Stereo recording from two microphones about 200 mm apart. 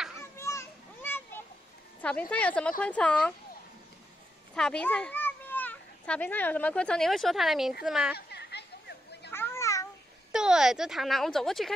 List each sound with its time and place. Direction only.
0.2 s children playing: 15° left (ahead or behind)
2.0 s a woman's voice: 5° left (ahead or behind)
4.6 s a child's voice: 5° left (ahead or behind)
8.3 s a sound: 55° left (ahead or behind)
9.3 s children playing: 10° left (ahead or behind)
10.3 s speech: 5° right (ahead or behind)